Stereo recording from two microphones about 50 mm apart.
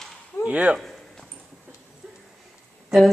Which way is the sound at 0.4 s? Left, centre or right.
Right.